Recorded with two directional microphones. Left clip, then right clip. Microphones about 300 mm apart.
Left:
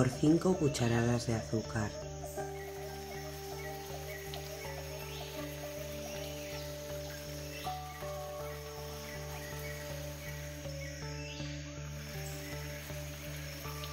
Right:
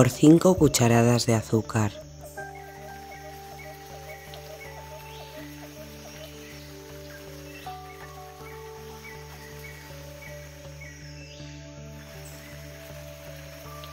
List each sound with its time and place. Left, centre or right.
0.0 s speech: right